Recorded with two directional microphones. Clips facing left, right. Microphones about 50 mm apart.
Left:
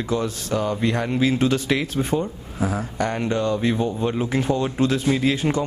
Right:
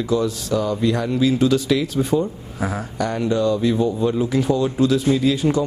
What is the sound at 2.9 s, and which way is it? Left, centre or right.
Speech, left.